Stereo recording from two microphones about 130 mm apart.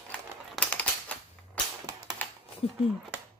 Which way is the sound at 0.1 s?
10° left (ahead or behind).